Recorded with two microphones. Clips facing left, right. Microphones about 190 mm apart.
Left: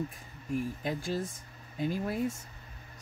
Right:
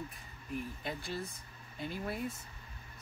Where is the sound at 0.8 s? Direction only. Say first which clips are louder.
Left 7 dB; 45° left (ahead or behind).